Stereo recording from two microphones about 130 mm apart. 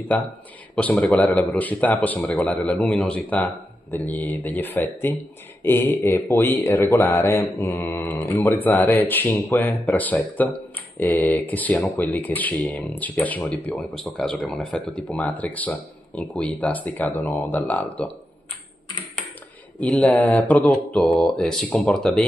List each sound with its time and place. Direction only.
0.1 s speech: 10° left (ahead or behind)
19.8 s speech: 10° left (ahead or behind)